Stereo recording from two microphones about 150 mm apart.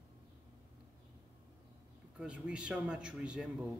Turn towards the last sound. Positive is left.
turn(degrees=-5)  # may be behind; listen again after turning